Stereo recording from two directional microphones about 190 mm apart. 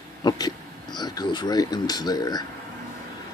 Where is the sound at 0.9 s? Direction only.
20° left (ahead or behind).